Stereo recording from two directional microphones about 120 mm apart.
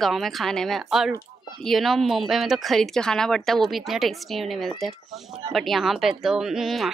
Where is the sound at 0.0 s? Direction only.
Centre (ahead or behind).